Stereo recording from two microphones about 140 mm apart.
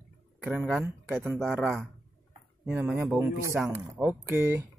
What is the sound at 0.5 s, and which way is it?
Speech, 5° right (ahead or behind).